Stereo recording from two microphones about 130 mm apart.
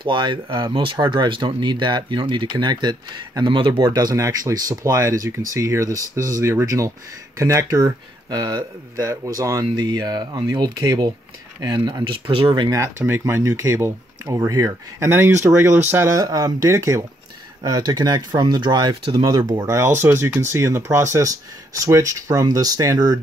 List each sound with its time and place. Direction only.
0.0 s speech: 35° right (ahead or behind)
12.7 s speech: 20° right (ahead or behind)